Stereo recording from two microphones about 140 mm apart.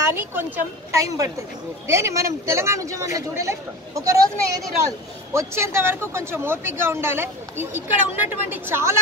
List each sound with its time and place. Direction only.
0.1 s speech: 15° right (ahead or behind)